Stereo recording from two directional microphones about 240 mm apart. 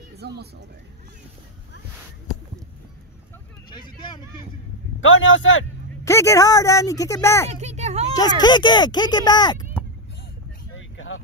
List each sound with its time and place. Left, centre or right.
0.2 s speech: right
5.0 s a man's voice: left
6.0 s speech: centre
7.4 s a child's voice: right
8.1 s speech: centre
10.7 s a sound: left